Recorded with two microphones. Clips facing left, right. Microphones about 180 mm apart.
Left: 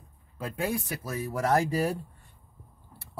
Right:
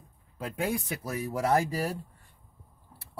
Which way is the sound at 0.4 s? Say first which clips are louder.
Even; 15° right (ahead or behind).